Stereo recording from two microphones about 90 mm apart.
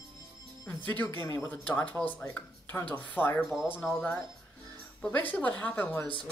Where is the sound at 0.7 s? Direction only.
20° left (ahead or behind).